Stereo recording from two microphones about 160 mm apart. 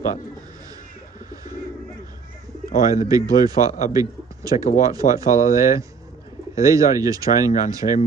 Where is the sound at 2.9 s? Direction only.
20° right (ahead or behind).